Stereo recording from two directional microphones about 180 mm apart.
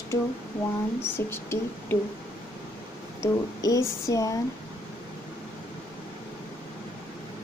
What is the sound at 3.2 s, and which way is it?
Speech, 20° left (ahead or behind).